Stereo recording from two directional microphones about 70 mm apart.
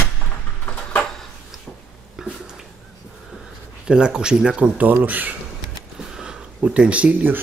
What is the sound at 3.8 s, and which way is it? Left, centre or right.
Speech, centre.